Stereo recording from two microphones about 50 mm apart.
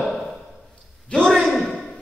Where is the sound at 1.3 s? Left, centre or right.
Centre.